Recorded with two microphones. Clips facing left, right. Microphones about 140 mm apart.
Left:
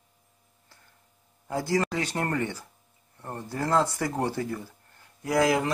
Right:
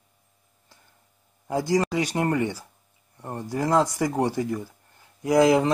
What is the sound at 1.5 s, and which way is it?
Speech, 15° right (ahead or behind).